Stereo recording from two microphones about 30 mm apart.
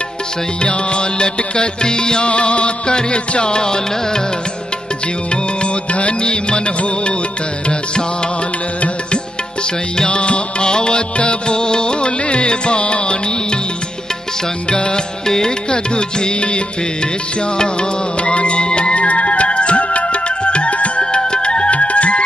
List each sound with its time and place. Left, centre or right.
0.7 s music: left
9.9 s music: left
15.2 s music: centre
15.7 s music: left
18.2 s music: left
21.0 s music: left
21.6 s music: left